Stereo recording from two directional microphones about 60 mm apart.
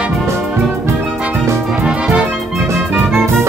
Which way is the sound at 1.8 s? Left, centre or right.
Centre.